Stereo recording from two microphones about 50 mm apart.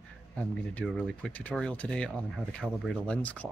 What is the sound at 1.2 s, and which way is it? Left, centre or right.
Speech, centre.